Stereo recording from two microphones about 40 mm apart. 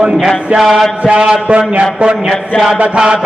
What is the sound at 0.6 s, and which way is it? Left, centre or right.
Speech, centre.